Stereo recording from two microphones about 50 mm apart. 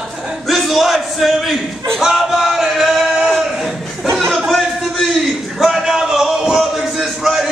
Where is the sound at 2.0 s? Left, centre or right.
Centre.